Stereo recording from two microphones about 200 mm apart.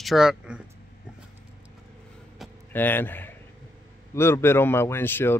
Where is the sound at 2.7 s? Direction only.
10° left (ahead or behind).